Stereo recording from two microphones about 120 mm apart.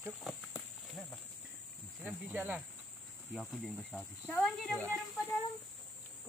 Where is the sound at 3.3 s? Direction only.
Centre (ahead or behind).